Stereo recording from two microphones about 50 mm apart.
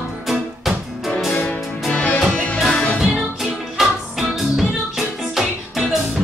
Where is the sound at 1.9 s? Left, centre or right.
Left.